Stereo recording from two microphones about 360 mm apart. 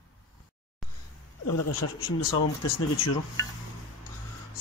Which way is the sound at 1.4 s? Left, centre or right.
Left.